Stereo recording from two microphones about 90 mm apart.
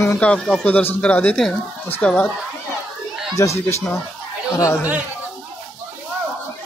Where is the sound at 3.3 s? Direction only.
35° left (ahead or behind).